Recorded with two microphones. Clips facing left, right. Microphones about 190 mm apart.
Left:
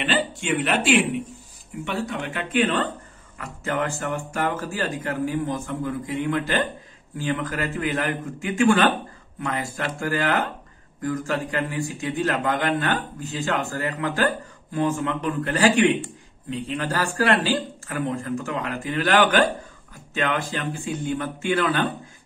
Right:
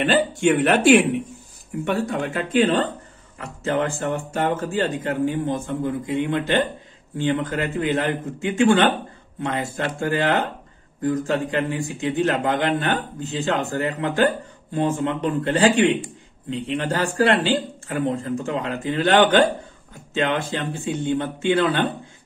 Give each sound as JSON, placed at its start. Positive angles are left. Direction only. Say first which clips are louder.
{"t": 0.0, "sound": "a man's voice", "louder": "right 7 dB", "side_deg": -50}
{"t": 1.9, "sound": "a man's voice", "louder": "right 5 dB", "side_deg": -40}